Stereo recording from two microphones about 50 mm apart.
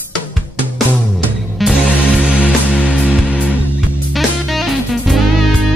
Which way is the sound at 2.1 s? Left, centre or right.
Right.